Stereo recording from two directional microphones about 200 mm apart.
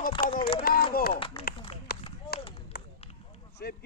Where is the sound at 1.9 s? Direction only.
50° left (ahead or behind).